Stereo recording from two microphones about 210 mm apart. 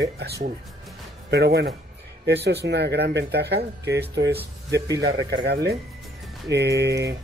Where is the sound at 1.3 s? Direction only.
50° right (ahead or behind).